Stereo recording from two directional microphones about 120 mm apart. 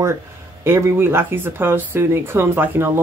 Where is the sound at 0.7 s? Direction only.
20° right (ahead or behind).